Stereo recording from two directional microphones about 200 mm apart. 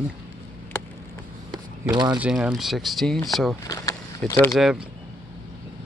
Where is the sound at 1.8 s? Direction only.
20° right (ahead or behind).